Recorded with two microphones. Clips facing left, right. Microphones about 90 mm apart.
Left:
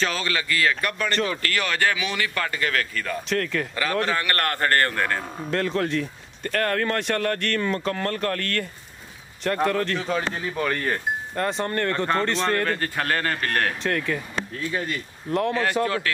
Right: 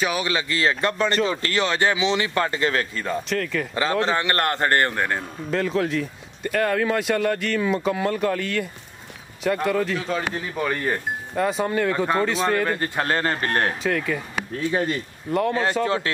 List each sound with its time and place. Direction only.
0.0 s speech: 15° right (ahead or behind)
3.3 s speech: centre (ahead or behind)
3.7 s speech: 20° right (ahead or behind)
5.5 s speech: centre (ahead or behind); by 13.7 s 30° right (ahead or behind)
13.8 s speech: centre (ahead or behind)
14.7 s speech: 30° right (ahead or behind)
15.3 s speech: centre (ahead or behind)